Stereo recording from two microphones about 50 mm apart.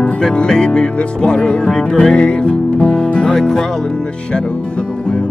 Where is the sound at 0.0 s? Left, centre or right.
Centre.